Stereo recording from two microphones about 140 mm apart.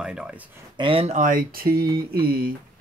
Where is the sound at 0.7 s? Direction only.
35° right (ahead or behind).